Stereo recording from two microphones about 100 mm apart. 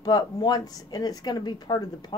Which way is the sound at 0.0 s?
40° left (ahead or behind).